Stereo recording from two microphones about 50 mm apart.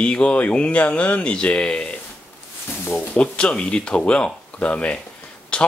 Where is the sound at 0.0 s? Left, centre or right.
Left.